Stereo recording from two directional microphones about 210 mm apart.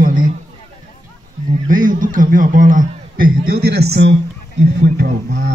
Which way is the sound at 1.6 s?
40° right (ahead or behind).